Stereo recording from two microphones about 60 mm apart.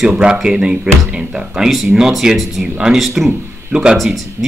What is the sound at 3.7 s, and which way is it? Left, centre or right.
Speech, centre.